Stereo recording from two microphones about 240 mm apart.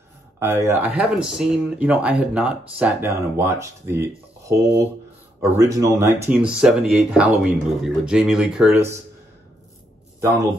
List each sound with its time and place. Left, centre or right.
0.4 s speech: centre